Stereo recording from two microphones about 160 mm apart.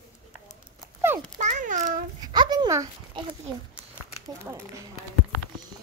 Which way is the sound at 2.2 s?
25° right (ahead or behind).